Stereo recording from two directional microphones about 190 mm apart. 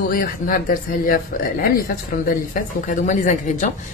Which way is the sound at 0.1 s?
50° left (ahead or behind).